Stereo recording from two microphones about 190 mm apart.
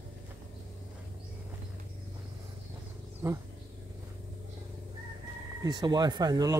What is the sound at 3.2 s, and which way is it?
Speech, 15° right (ahead or behind).